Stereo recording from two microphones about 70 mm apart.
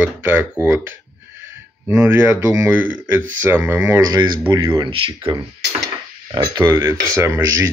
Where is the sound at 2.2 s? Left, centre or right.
Right.